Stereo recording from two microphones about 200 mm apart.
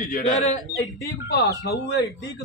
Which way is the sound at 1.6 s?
55° left (ahead or behind).